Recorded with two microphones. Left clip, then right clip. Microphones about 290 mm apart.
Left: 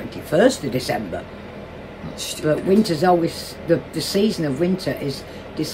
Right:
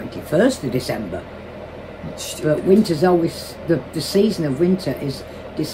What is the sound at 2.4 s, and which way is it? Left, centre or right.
Speech, centre.